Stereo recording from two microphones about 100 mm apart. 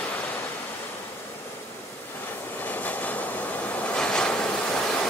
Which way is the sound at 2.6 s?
15° left (ahead or behind).